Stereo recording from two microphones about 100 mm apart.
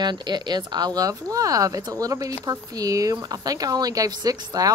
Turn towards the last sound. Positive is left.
turn(degrees=-40)  # may be behind; listen again after turning